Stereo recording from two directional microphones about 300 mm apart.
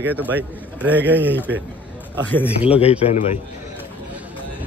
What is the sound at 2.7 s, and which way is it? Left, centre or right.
Speech, centre.